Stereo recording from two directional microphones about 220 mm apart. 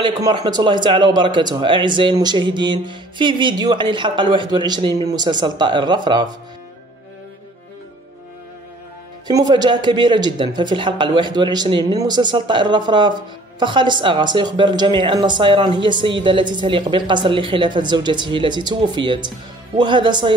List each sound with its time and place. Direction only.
0.0 s speech: 20° right (ahead or behind)
9.3 s speech: 20° right (ahead or behind)